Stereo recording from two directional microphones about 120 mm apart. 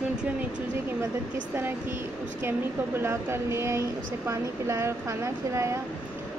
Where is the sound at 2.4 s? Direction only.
20° right (ahead or behind).